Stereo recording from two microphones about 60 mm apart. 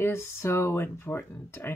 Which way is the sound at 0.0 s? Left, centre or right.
Left.